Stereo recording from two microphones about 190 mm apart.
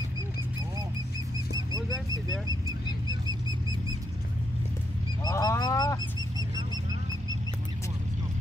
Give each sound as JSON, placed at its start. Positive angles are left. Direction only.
{"t": 1.7, "sound": "speech", "side_deg": -20}
{"t": 5.2, "sound": "wild animals", "side_deg": 20}